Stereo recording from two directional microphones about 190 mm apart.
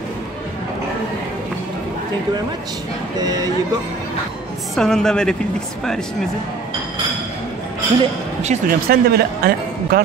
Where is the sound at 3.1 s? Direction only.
20° right (ahead or behind).